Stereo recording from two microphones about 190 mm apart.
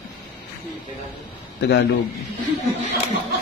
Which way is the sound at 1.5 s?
65° left (ahead or behind).